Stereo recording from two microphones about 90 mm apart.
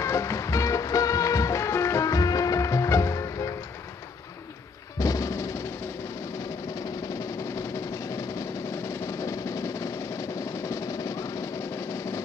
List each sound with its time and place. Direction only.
0.0 s music: 35° left (ahead or behind)
4.9 s music: 40° left (ahead or behind)
6.7 s music: 35° left (ahead or behind)